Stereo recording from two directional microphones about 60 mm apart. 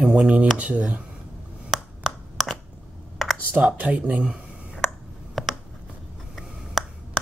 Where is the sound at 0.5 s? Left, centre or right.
Centre.